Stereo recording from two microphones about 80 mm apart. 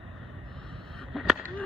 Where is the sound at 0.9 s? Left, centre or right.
Centre.